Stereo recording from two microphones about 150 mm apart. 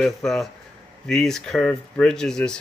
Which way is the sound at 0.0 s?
Centre (ahead or behind).